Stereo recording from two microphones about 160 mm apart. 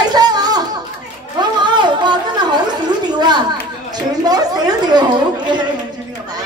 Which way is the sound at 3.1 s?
25° right (ahead or behind).